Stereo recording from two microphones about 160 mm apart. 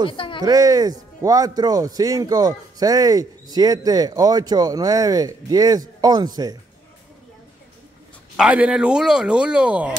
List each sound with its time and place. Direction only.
0.4 s a man's voice: 25° right (ahead or behind)
8.4 s speech: 5° right (ahead or behind)